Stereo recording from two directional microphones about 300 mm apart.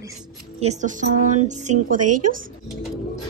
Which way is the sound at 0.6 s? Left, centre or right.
Right.